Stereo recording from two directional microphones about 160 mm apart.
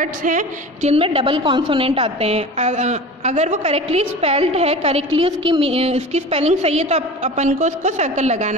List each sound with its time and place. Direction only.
0.0 s a woman's voice: 55° right (ahead or behind)